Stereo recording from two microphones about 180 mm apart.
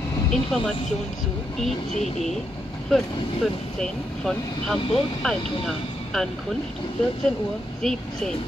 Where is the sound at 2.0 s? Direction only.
35° left (ahead or behind).